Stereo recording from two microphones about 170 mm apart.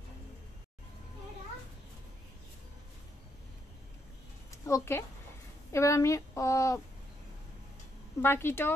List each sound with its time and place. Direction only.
4.5 s a sound: 20° left (ahead or behind)
5.7 s a woman's voice: 15° left (ahead or behind)
8.2 s a woman's voice: 15° left (ahead or behind)